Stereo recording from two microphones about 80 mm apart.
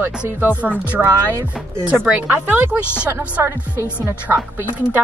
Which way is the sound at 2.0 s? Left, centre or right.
Centre.